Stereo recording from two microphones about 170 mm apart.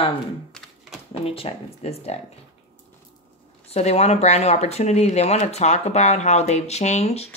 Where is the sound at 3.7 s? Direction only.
40° left (ahead or behind).